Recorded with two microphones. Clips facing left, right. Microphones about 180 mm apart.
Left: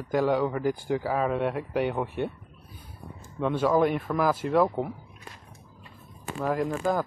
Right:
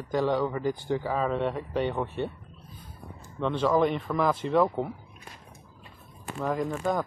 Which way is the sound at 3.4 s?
10° left (ahead or behind).